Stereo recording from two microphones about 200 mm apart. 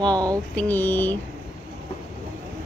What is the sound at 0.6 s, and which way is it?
Speech, 10° left (ahead or behind).